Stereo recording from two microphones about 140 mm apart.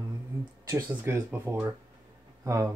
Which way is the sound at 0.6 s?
20° right (ahead or behind).